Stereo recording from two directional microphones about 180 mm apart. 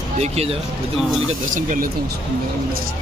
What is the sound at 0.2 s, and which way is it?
Speech, 35° right (ahead or behind).